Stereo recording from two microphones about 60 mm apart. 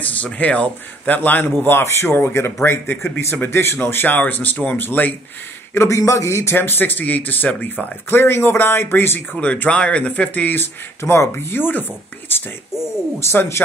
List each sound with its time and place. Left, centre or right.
0.0 s a man's voice: left
5.8 s a man's voice: left
6.5 s speech: left
9.4 s speech: left